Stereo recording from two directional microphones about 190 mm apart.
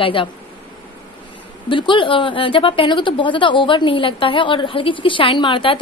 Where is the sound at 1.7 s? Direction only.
25° left (ahead or behind).